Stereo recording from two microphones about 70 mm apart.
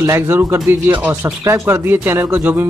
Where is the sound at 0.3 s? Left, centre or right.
Right.